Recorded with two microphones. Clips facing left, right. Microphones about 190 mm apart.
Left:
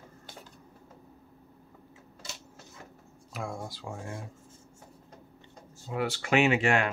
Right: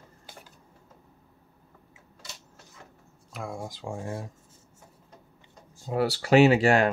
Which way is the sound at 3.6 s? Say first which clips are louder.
Right 3 dB; 20° right (ahead or behind).